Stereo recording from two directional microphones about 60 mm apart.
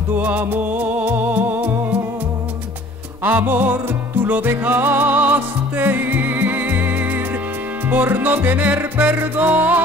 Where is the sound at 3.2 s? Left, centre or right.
Right.